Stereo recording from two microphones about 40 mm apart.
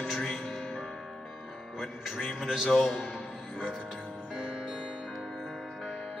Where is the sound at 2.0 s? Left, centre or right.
Centre.